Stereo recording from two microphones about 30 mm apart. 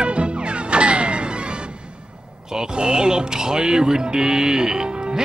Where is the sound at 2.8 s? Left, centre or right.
Right.